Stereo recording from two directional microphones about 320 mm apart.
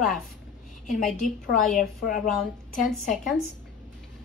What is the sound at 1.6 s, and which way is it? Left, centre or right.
Speech, centre.